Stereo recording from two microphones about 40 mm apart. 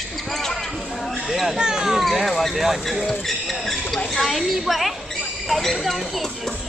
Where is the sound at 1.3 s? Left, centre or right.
Centre.